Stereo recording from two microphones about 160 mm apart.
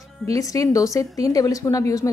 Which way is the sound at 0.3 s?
20° left (ahead or behind).